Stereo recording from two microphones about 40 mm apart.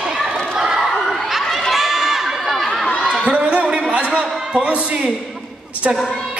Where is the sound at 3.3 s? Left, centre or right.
Right.